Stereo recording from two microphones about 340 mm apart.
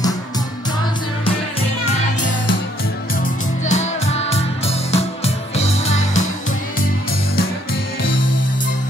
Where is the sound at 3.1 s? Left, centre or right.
Left.